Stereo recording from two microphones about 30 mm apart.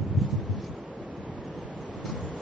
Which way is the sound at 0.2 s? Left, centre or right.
Centre.